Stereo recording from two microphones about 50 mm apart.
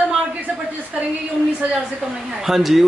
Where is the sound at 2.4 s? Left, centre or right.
Centre.